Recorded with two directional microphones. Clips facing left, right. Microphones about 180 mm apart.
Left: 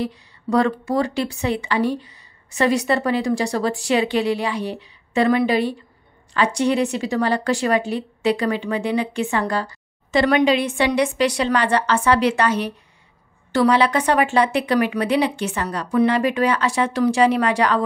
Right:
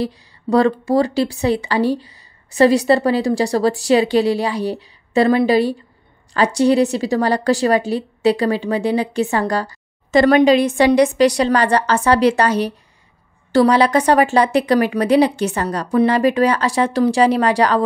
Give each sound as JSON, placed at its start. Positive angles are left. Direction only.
{"t": 0.0, "sound": "a woman's voice", "side_deg": -35}